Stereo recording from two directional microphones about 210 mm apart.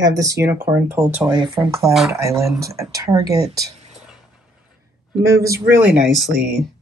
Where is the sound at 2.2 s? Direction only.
15° right (ahead or behind).